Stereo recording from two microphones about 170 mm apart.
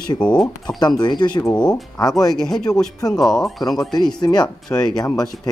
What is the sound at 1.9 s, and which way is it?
Speech, 20° left (ahead or behind).